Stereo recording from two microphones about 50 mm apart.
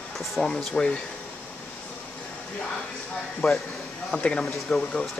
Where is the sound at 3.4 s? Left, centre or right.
Centre.